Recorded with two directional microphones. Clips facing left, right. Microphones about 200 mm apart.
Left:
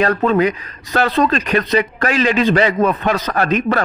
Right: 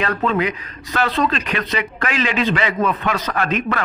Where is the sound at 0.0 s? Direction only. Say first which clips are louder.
Left 5 dB; 40° left (ahead or behind).